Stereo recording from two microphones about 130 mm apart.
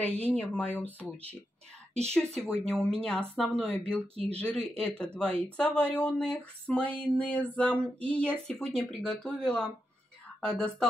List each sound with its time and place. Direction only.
0.0 s speech: 10° left (ahead or behind)
2.5 s speech: 5° left (ahead or behind)